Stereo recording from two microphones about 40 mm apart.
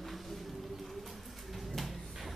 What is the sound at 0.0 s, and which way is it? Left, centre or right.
Vehicle, centre.